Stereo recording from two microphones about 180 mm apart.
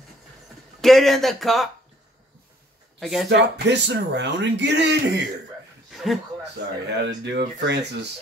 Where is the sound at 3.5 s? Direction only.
75° right (ahead or behind).